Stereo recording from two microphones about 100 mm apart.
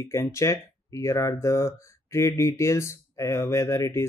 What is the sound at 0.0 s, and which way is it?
Speech, 30° left (ahead or behind).